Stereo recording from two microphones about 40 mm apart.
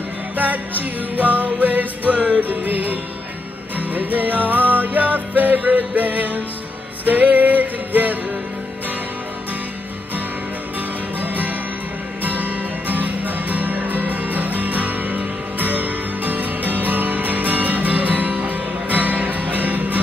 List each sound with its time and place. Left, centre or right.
1.1 s music: right
2.5 s music: right
11.1 s music: right